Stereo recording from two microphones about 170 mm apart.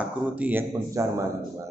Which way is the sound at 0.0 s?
10° right (ahead or behind).